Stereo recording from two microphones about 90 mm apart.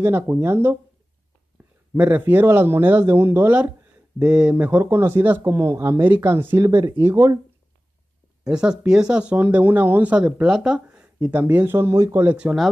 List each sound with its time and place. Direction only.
0.0 s speech: 25° right (ahead or behind)
2.0 s speech: 20° right (ahead or behind)
4.8 s speech: 30° right (ahead or behind)
6.6 s speech: 50° right (ahead or behind)
7.0 s speech: 25° right (ahead or behind)
8.5 s speech: 10° right (ahead or behind); by 12.3 s 35° right (ahead or behind)
12.3 s speech: 15° right (ahead or behind)